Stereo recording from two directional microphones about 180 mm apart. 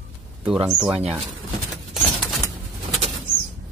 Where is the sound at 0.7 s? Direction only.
5° right (ahead or behind).